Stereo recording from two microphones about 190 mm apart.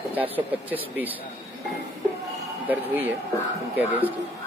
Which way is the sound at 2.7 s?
10° right (ahead or behind).